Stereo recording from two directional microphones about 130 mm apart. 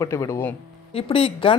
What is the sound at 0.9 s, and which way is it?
Speech, 45° left (ahead or behind).